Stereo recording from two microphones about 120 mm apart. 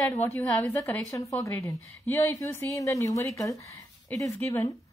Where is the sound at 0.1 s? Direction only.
20° left (ahead or behind).